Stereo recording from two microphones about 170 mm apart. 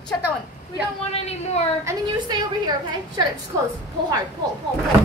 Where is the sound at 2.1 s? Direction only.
25° right (ahead or behind).